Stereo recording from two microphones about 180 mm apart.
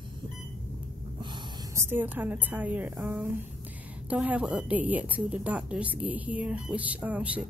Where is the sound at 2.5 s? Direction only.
10° right (ahead or behind).